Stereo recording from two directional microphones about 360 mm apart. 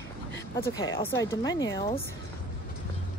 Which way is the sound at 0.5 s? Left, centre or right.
Centre.